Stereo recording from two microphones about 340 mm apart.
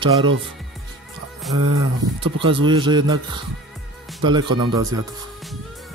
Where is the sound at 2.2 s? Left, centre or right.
Centre.